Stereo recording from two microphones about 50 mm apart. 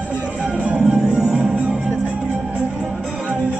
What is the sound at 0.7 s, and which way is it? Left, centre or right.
Music, right.